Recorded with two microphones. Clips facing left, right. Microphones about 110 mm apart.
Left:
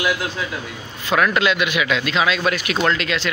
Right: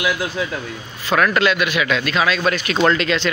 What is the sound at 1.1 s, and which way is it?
A man's voice, 15° left (ahead or behind).